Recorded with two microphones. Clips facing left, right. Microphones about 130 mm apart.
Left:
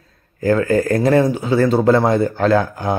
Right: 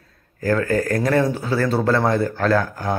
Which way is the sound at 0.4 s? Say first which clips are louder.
Left 4 dB; 20° left (ahead or behind).